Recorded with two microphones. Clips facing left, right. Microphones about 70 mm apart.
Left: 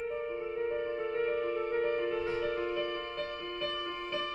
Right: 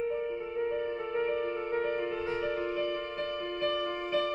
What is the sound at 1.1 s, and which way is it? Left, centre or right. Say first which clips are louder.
Music: right 1 dB; centre.